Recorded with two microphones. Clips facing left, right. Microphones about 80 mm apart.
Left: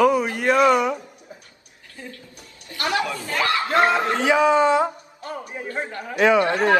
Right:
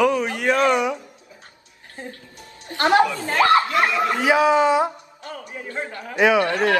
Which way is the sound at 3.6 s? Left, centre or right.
Left.